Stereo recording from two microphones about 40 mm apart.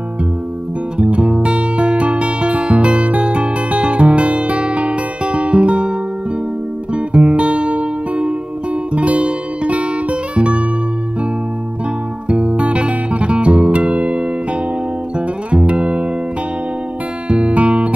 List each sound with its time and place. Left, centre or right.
0.9 s music: right
12.3 s music: right
17.3 s music: right